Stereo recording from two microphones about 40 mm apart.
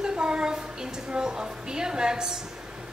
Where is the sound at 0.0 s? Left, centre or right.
Centre.